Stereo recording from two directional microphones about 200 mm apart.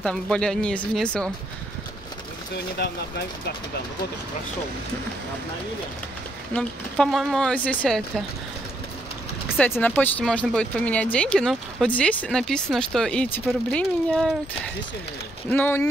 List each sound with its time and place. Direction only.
0.0 s speech: 5° left (ahead or behind)
2.5 s speech: 55° left (ahead or behind)
6.5 s speech: 5° left (ahead or behind)
9.6 s speech: 5° left (ahead or behind)
15.5 s speech: 10° left (ahead or behind)